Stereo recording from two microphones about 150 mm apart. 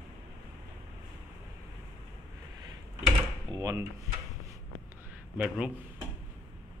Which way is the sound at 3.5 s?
20° right (ahead or behind).